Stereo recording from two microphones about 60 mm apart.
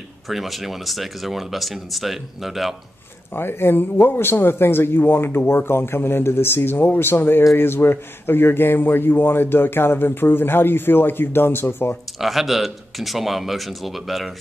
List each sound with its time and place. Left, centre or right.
0.3 s speech: centre
3.3 s a man's voice: left
12.2 s speech: centre